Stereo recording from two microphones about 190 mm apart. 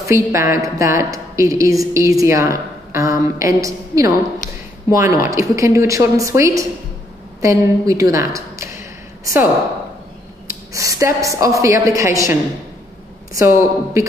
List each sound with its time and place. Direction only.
0.0 s a woman's voice: 15° right (ahead or behind)
10.7 s a woman's voice: 15° right (ahead or behind)